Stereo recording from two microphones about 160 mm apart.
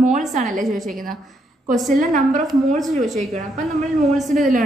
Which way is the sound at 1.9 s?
50° right (ahead or behind).